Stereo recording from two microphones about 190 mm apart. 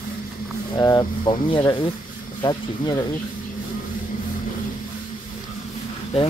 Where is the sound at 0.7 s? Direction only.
20° left (ahead or behind).